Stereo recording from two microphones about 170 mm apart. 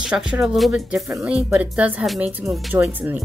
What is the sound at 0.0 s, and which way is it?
Speech, 5° right (ahead or behind).